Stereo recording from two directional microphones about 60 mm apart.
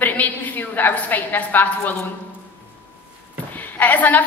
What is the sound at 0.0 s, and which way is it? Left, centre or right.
A woman's voice, left.